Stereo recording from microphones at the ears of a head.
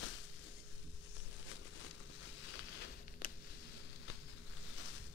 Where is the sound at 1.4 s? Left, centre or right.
Left.